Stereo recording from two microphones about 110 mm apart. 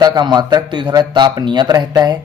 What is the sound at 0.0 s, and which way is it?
Speech, 40° right (ahead or behind).